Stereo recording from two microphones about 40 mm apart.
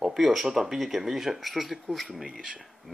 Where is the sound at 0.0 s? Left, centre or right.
Centre.